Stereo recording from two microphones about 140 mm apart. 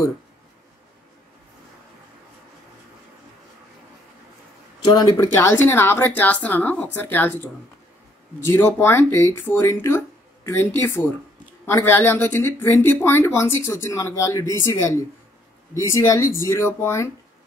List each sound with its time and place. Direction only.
4.8 s speech: 30° left (ahead or behind)